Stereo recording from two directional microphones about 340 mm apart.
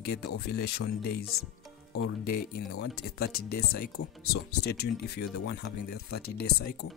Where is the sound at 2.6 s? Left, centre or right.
Left.